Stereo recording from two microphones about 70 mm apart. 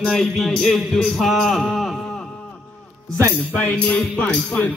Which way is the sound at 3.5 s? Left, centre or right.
Centre.